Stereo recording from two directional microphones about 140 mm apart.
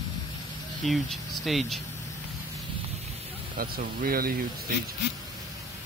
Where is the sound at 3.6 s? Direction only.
90° right.